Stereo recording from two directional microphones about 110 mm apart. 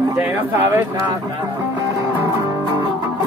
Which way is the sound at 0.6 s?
20° right (ahead or behind).